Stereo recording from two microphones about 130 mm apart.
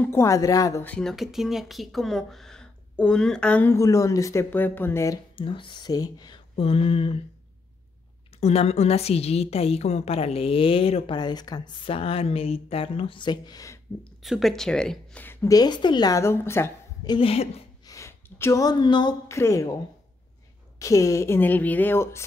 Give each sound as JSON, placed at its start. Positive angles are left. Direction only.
{"t": 0.0, "sound": "a woman's voice", "side_deg": 20}
{"t": 0.8, "sound": "speech", "side_deg": 10}
{"t": 1.1, "sound": "speech", "side_deg": 0}
{"t": 3.7, "sound": "a woman's voice", "side_deg": 25}
{"t": 5.3, "sound": "speech", "side_deg": 40}
{"t": 8.4, "sound": "a woman's voice", "side_deg": 55}
{"t": 11.1, "sound": "a woman's voice", "side_deg": 35}
{"t": 14.2, "sound": "speech", "side_deg": 0}
{"t": 15.2, "sound": "a woman's voice", "side_deg": 25}
{"t": 17.0, "sound": "a woman's voice", "side_deg": 35}
{"t": 17.3, "sound": "a woman's voice", "side_deg": 50}
{"t": 17.8, "sound": "a sound", "side_deg": 25}
{"t": 19.2, "sound": "a woman's voice", "side_deg": 20}
{"t": 20.8, "sound": "a woman's voice", "side_deg": 25}